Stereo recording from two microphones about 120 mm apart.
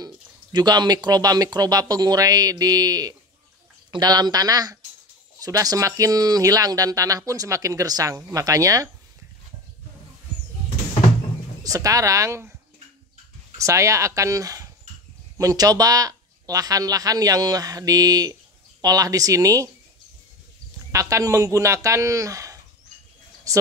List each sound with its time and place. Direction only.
0.0 s speech: 35° right (ahead or behind)
11.6 s speech: 30° right (ahead or behind)
13.6 s speech: 25° right (ahead or behind)
20.9 s speech: 25° right (ahead or behind)